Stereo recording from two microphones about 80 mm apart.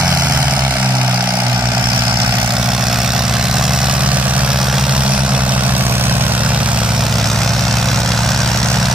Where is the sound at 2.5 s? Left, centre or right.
Centre.